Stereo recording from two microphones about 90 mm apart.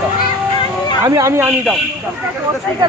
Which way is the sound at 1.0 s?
35° right (ahead or behind).